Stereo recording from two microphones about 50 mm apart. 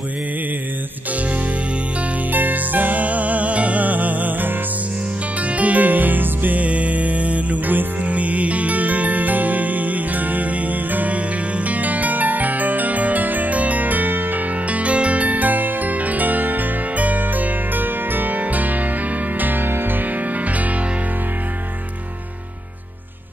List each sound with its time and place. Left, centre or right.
2.3 s music: right
19.4 s music: right